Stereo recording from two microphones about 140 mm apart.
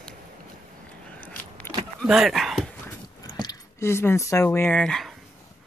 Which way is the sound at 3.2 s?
25° left (ahead or behind).